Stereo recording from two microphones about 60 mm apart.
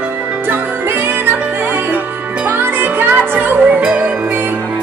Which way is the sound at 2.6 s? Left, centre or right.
Right.